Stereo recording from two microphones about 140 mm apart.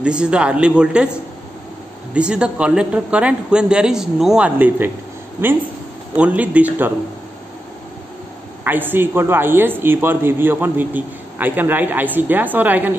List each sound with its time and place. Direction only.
0.0 s speech: 5° right (ahead or behind)
2.1 s speech: 5° right (ahead or behind)
8.6 s speech: 15° right (ahead or behind)